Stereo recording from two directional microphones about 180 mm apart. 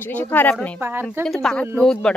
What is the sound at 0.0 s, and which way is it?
Speech, 10° left (ahead or behind).